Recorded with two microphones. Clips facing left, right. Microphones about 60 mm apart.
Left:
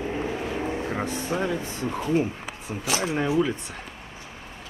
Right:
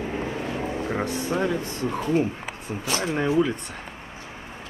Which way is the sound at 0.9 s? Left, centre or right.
Centre.